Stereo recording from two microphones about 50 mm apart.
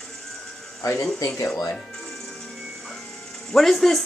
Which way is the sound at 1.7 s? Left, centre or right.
Centre.